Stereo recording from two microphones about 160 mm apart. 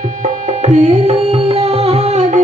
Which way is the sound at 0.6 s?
45° right (ahead or behind).